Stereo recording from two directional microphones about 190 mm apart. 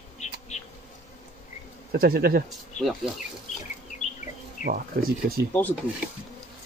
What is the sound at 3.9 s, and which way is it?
Insect, 40° left (ahead or behind).